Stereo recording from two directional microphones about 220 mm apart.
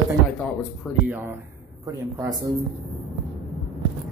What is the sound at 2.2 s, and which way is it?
Speech, 15° right (ahead or behind).